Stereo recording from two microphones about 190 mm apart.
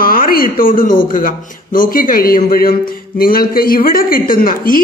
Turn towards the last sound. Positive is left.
turn(degrees=45)  # may be behind; listen again after turning